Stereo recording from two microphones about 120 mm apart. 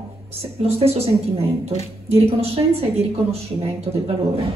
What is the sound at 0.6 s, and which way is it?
A woman's voice, 55° right (ahead or behind).